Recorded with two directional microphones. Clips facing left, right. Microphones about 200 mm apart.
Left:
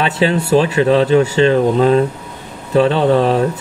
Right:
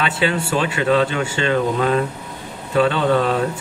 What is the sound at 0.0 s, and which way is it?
Speech, 35° left (ahead or behind).